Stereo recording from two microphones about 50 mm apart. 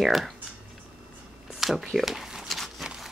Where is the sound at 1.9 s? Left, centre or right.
Centre.